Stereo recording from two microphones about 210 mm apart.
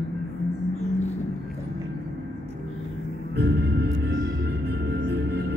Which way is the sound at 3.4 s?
50° right (ahead or behind).